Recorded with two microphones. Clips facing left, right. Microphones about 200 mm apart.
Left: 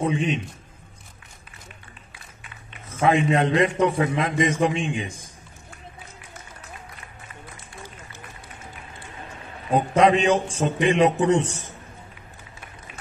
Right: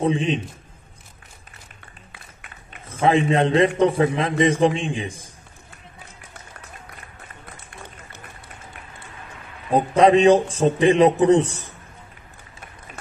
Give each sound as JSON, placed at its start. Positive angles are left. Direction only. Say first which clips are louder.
{"t": 0.0, "sound": "a man's voice", "louder": "right 3 dB", "side_deg": -30}
{"t": 2.7, "sound": "a man's voice", "louder": "right 2 dB", "side_deg": -30}
{"t": 9.8, "sound": "a man's voice", "louder": "right 3 dB", "side_deg": -35}